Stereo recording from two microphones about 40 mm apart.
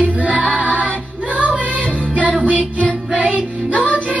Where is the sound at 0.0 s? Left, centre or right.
Right.